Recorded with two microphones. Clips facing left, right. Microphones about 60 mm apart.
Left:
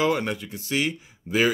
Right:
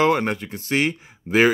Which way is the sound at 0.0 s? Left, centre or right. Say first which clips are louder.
Right 4 dB; right.